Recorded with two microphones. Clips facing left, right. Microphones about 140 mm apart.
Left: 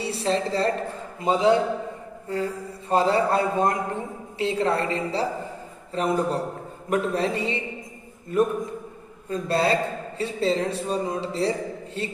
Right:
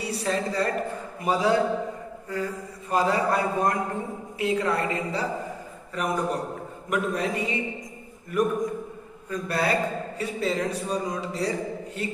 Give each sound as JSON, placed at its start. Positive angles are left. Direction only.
{"t": 0.0, "sound": "a woman's voice", "side_deg": 25}